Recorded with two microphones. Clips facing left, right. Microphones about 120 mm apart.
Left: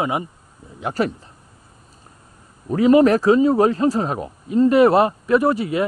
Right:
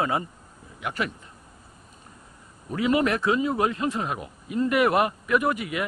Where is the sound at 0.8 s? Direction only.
35° left (ahead or behind).